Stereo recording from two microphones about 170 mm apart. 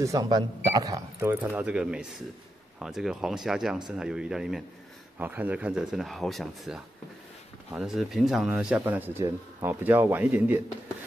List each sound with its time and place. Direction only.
0.0 s speech: 20° right (ahead or behind)